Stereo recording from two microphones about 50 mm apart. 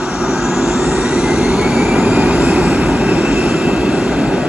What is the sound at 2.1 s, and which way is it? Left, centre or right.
Train, right.